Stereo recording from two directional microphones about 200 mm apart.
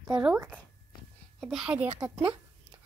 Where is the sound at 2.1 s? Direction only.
25° right (ahead or behind).